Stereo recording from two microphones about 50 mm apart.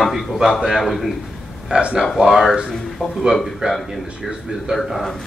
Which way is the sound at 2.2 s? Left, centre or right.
Centre.